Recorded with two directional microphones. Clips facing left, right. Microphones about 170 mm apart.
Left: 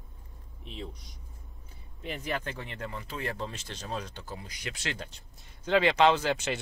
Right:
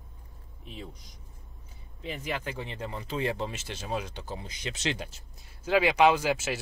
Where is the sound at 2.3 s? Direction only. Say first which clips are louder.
Even; 20° right (ahead or behind).